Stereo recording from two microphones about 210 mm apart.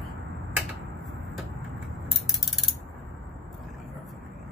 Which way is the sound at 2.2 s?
Centre (ahead or behind).